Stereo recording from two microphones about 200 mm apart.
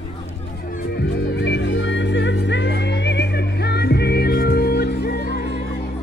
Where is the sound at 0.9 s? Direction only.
55° left (ahead or behind).